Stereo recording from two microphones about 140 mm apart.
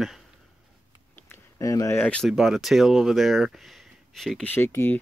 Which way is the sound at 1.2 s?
25° left (ahead or behind).